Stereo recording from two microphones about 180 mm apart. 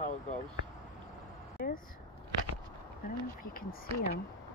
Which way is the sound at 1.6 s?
60° left (ahead or behind).